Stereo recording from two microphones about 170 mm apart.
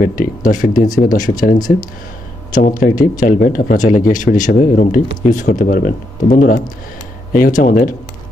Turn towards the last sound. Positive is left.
turn(degrees=50)  # may be behind; listen again after turning